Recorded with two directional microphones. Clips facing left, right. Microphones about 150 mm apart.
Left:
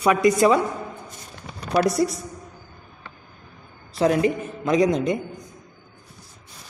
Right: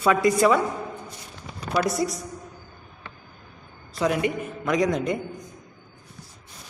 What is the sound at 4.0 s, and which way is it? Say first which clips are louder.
A man's voice: left 4 dB; 30° left (ahead or behind).